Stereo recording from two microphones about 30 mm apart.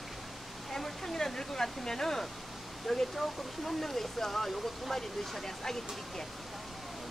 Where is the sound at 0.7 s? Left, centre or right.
Centre.